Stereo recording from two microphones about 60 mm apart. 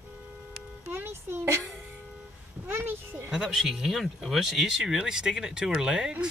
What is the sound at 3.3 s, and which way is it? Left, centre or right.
Speech, centre.